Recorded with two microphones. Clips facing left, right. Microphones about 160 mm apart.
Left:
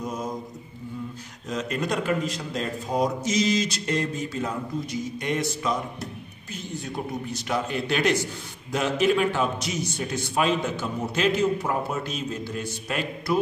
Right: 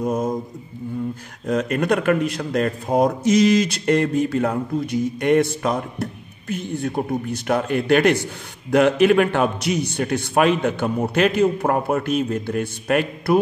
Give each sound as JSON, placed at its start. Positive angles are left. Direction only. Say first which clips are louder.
{"t": 0.0, "sound": "mantra", "louder": "right 9 dB", "side_deg": -50}
{"t": 1.5, "sound": "a man's voice", "louder": "right 8 dB", "side_deg": -55}